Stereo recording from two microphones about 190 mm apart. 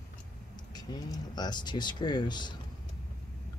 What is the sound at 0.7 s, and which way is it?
Speech, 20° left (ahead or behind).